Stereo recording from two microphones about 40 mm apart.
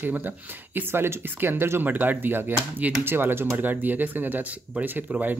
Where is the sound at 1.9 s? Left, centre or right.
Right.